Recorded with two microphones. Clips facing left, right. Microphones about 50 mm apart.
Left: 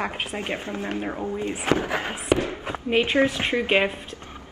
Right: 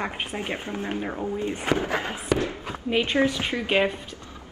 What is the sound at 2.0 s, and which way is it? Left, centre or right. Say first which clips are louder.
A woman's voice: left 2 dB; left.